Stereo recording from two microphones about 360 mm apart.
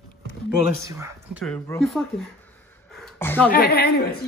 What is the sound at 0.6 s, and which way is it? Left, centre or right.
Speech, centre.